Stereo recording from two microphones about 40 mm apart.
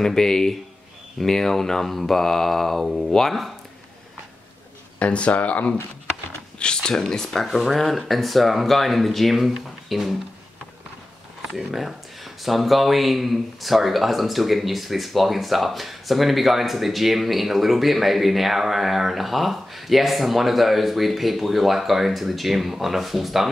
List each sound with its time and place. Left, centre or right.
0.0 s mantra: centre
4.9 s speech: left
6.6 s mantra: left
7.4 s speech: centre
11.5 s speech: centre